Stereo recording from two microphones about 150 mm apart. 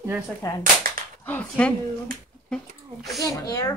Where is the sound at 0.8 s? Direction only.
70° right (ahead or behind).